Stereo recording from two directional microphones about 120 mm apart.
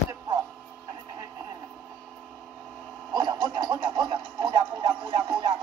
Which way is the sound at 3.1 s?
40° right (ahead or behind).